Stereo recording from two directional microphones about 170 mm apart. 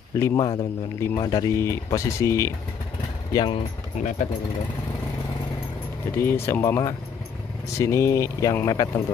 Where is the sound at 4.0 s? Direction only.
50° left (ahead or behind).